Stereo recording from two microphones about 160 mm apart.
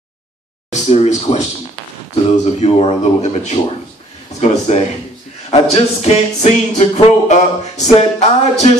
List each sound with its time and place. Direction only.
0.7 s speech: 45° left (ahead or behind)